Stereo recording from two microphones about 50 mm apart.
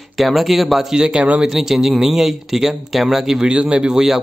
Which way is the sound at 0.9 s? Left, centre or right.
Centre.